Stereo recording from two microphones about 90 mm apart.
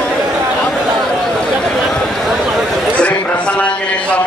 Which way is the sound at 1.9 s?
Centre (ahead or behind).